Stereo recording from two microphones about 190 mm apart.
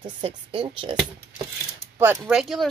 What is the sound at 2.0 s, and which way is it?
Speech, 10° right (ahead or behind).